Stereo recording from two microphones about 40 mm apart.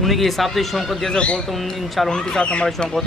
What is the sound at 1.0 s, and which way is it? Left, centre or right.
Speech, left.